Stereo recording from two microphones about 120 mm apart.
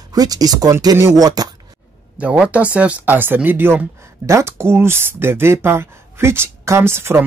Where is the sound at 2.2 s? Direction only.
10° right (ahead or behind).